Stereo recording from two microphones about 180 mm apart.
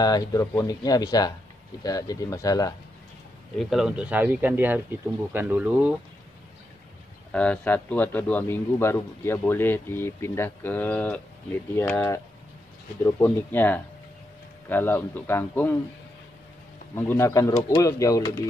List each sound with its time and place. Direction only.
0.0 s speech: 20° left (ahead or behind)
3.5 s speech: 5° right (ahead or behind)
7.3 s a man's voice: 5° left (ahead or behind)
16.9 s a man's voice: 15° left (ahead or behind)